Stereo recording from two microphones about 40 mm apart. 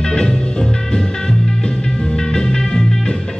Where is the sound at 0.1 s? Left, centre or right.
Centre.